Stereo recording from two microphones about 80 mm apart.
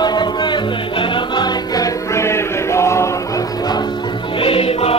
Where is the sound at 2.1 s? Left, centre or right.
Left.